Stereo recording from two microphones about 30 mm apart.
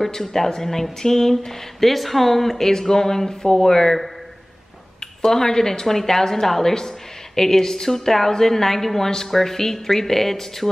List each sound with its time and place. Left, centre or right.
0.1 s a woman's voice: centre